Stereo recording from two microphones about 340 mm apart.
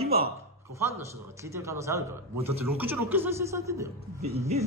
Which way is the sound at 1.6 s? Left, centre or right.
Centre.